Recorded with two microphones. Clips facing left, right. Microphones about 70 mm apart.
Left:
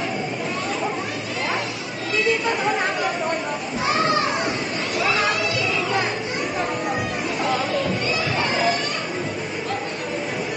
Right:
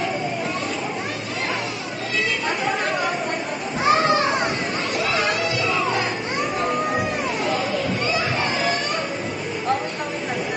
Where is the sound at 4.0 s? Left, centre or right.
Right.